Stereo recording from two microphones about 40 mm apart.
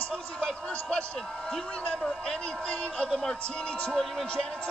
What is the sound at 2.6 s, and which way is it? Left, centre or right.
Speech, left.